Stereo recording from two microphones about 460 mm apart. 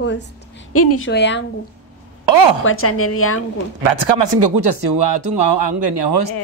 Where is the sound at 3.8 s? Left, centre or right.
Right.